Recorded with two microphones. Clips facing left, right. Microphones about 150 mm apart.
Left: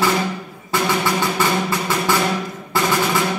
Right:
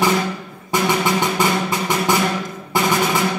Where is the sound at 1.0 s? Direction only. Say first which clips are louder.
Right 1 dB; 20° right (ahead or behind).